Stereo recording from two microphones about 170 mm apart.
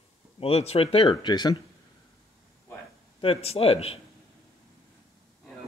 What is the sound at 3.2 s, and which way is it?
Speech, 35° left (ahead or behind).